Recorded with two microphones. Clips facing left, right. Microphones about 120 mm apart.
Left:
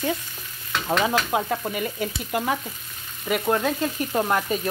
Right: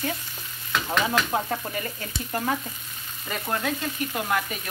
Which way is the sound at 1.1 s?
10° left (ahead or behind).